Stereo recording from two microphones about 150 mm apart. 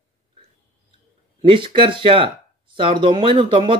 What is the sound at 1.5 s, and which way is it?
A man's voice, 35° right (ahead or behind).